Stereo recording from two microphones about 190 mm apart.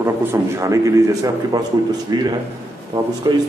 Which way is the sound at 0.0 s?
15° right (ahead or behind).